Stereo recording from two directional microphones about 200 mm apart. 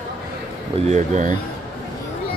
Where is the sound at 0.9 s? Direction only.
35° right (ahead or behind).